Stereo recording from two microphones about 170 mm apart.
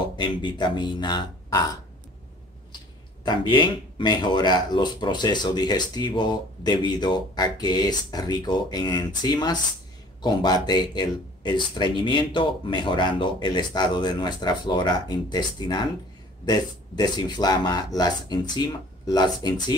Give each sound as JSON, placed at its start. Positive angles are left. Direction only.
{"t": 0.0, "sound": "speech", "side_deg": 25}
{"t": 3.3, "sound": "speech", "side_deg": 25}